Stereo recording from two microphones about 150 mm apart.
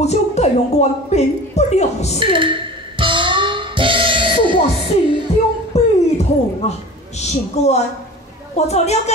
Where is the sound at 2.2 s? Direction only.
35° right (ahead or behind).